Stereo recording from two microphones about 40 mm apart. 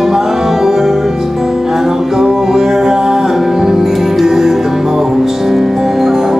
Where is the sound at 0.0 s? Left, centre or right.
Centre.